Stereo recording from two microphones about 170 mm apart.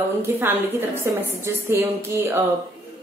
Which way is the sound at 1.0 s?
15° right (ahead or behind).